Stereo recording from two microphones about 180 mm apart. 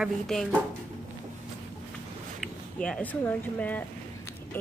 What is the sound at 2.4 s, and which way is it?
Speech, 5° left (ahead or behind).